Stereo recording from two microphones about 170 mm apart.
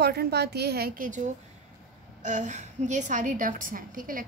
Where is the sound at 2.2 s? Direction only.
45° right (ahead or behind).